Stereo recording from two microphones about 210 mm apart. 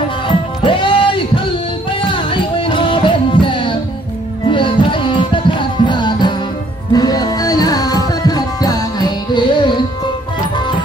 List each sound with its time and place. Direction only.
0.7 s music: 25° left (ahead or behind)